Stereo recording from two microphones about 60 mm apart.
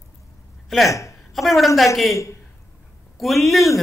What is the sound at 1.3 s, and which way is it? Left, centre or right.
Speech, centre.